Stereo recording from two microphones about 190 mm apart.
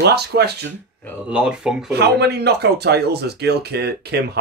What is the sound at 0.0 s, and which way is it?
Speech, 60° right (ahead or behind).